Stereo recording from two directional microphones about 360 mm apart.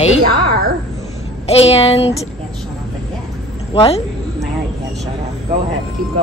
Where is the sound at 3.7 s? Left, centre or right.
Centre.